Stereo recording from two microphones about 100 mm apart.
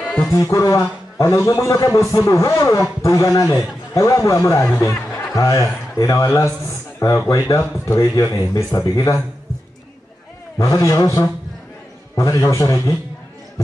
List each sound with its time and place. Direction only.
0.0 s music: 10° left (ahead or behind)
0.3 s a man's voice: 30° left (ahead or behind)
10.8 s a man's voice: 30° left (ahead or behind)